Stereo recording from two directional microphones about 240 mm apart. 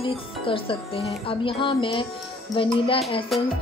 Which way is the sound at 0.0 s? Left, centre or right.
Left.